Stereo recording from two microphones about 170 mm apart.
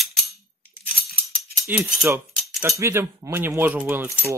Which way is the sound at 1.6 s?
10° right (ahead or behind).